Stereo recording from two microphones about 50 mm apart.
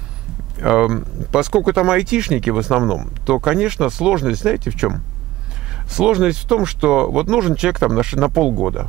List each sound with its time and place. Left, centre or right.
0.6 s speech: centre